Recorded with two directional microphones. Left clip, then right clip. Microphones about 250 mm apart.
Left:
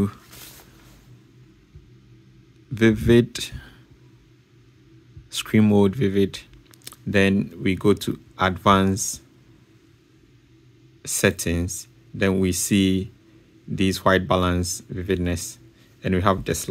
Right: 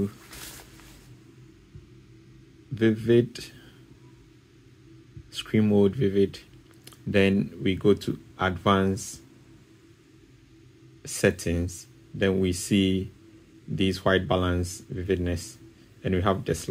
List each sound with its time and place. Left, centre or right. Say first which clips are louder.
2.7 s speech: left 4 dB; left
5.3 s speech: left 4 dB; left
11.0 s speech: left 3 dB; left